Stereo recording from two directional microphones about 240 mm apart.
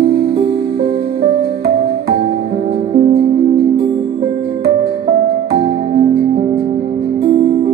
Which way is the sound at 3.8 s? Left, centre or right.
Right.